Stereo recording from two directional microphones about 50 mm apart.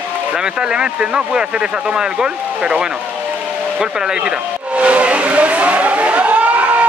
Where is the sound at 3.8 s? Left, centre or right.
Centre.